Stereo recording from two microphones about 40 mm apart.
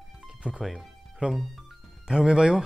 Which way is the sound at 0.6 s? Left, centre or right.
Centre.